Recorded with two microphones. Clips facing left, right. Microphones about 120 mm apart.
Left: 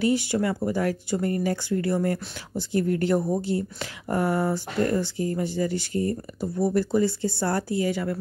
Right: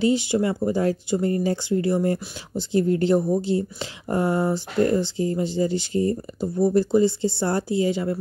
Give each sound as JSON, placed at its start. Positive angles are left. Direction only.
{"t": 0.0, "sound": "speech", "side_deg": -20}